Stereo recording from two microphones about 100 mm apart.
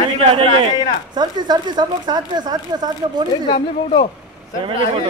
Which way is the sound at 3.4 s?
60° left (ahead or behind).